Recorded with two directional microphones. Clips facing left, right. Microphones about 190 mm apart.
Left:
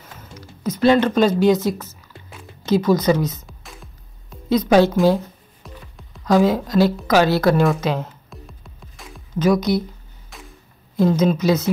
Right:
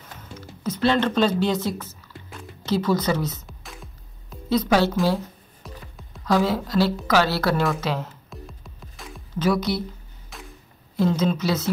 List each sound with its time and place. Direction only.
0.4 s a woman's voice: 10° left (ahead or behind)
3.4 s music: centre (ahead or behind)
4.5 s a woman's voice: 15° left (ahead or behind)
5.6 s music: centre (ahead or behind)
6.2 s a woman's voice: 15° left (ahead or behind)
8.3 s music: centre (ahead or behind)
9.4 s a woman's voice: 15° left (ahead or behind)
10.3 s a sound: centre (ahead or behind)
11.1 s a woman's voice: 15° left (ahead or behind)